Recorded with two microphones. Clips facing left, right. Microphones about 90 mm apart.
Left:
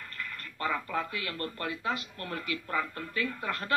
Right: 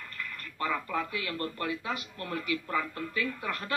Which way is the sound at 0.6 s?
30° left (ahead or behind).